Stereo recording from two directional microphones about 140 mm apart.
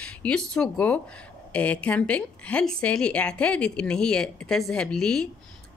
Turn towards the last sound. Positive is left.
turn(degrees=5)  # may be behind; listen again after turning